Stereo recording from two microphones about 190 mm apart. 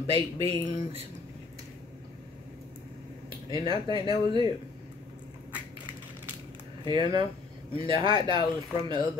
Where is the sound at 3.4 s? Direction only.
20° right (ahead or behind).